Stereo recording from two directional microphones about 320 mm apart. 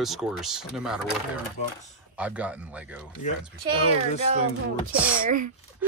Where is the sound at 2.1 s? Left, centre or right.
Centre.